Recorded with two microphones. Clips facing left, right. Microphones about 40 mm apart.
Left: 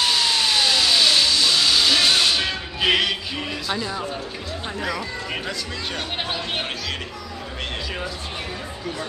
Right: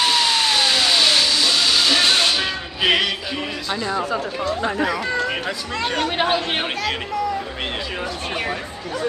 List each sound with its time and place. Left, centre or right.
0.0 s music: centre
3.6 s speech: centre
6.1 s speech: right